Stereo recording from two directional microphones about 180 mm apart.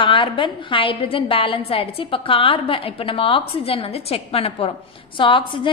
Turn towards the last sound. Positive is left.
turn(degrees=25)  # may be behind; listen again after turning